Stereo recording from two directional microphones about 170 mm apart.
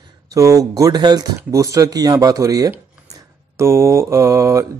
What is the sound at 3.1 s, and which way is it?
Mantra, 15° right (ahead or behind).